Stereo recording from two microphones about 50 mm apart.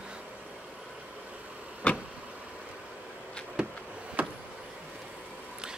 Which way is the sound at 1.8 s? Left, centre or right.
Left.